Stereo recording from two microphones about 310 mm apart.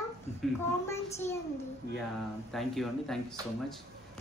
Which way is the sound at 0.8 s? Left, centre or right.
Centre.